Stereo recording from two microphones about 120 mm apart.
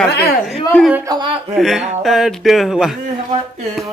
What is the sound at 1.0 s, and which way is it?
Speech, 35° right (ahead or behind).